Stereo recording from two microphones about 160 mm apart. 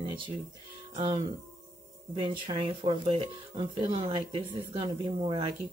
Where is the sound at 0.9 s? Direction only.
35° right (ahead or behind).